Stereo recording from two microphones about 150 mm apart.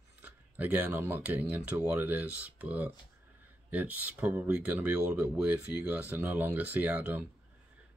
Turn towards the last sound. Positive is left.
turn(degrees=-10)  # may be behind; listen again after turning